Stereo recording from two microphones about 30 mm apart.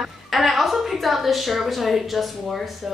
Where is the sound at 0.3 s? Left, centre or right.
Centre.